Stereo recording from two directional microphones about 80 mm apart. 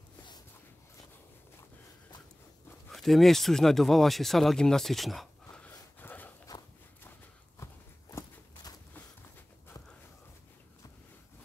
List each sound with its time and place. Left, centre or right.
2.9 s speech: centre
5.5 s a sound: centre
7.6 s walk: left